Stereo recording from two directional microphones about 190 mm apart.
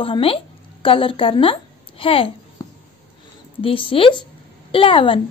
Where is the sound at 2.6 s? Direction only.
15° left (ahead or behind).